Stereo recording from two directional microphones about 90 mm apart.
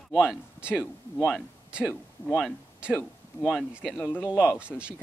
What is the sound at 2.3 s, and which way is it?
Speech, 10° right (ahead or behind).